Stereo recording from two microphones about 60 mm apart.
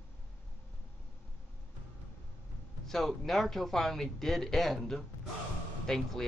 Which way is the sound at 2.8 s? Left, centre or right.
Centre.